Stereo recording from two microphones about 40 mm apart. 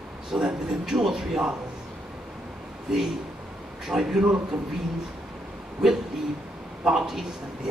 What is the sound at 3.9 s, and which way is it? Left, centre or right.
Speech, centre.